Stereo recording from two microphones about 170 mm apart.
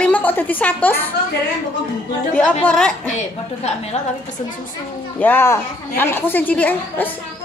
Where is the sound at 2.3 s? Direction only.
10° left (ahead or behind).